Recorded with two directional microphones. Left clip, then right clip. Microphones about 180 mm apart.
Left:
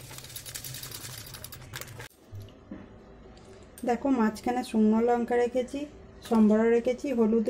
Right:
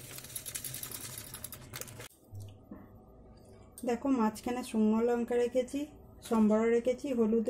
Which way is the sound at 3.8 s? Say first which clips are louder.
Left 5 dB; centre (ahead or behind).